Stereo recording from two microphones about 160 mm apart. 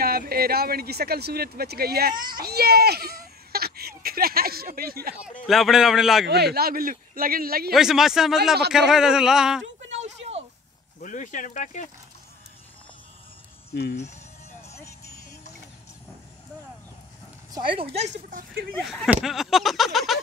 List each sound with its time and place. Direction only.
0.0 s speech: 70° right (ahead or behind)
2.4 s a child's voice: 80° right
5.5 s speech: centre (ahead or behind)
6.2 s a child's voice: 90° right; by 7.7 s 70° right (ahead or behind)
7.7 s speech: centre (ahead or behind)
9.9 s a sound: 45° right (ahead or behind)
11.0 s speech: 55° left (ahead or behind)
14.7 s music: 20° left (ahead or behind)
17.5 s speech: 30° right (ahead or behind)
18.8 s speech: centre (ahead or behind)